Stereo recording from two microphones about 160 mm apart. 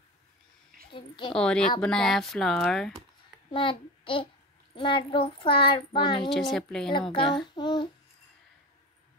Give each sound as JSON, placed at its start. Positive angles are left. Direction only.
{"t": 0.9, "sound": "speech", "side_deg": 30}
{"t": 1.3, "sound": "speech", "side_deg": 5}
{"t": 3.5, "sound": "a child's voice", "side_deg": 30}
{"t": 6.5, "sound": "speech", "side_deg": 5}
{"t": 6.9, "sound": "speech", "side_deg": 30}
{"t": 7.3, "sound": "child singing", "side_deg": 30}